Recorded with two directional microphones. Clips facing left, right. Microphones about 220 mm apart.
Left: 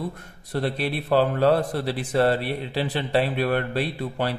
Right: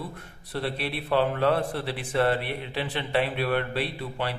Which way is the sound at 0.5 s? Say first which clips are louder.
Left 5 dB; 45° left (ahead or behind).